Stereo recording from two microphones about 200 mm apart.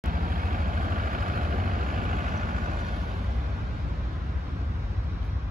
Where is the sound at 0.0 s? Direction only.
45° right (ahead or behind).